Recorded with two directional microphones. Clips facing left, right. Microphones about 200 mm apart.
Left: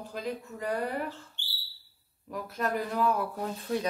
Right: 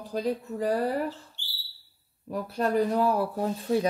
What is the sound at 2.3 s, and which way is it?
Speech, 30° right (ahead or behind).